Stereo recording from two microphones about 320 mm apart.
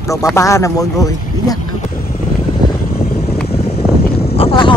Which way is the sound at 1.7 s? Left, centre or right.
Left.